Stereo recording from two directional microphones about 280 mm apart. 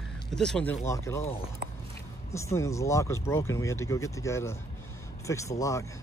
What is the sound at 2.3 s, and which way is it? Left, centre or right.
Speech, centre.